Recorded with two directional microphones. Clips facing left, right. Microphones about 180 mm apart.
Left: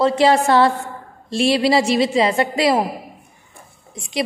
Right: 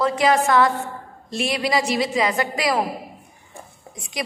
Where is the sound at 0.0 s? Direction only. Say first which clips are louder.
Left 4 dB; 30° left (ahead or behind).